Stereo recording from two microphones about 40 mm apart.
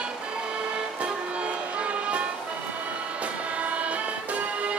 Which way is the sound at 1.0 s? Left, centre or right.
Right.